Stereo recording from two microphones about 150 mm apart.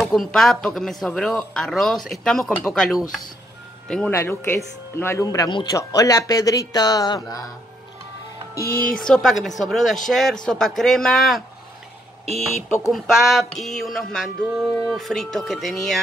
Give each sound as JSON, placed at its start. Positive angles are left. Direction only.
{"t": 0.0, "sound": "music", "side_deg": 0}
{"t": 3.8, "sound": "speech", "side_deg": 5}
{"t": 4.1, "sound": "speech", "side_deg": 20}
{"t": 8.9, "sound": "music", "side_deg": 5}
{"t": 12.9, "sound": "music", "side_deg": 0}